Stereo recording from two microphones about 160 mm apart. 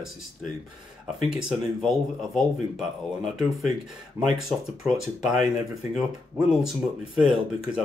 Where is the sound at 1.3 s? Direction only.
Centre (ahead or behind).